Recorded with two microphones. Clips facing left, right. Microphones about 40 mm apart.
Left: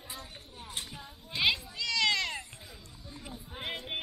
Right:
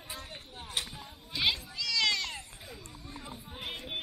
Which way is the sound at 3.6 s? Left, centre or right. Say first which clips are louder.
Left 2 dB; centre.